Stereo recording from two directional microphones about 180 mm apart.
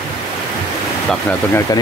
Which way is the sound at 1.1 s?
10° left (ahead or behind).